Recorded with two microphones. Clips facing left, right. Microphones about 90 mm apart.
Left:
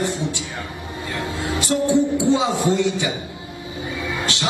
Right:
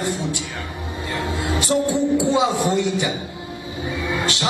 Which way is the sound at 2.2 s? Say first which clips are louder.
Even; 20° right (ahead or behind).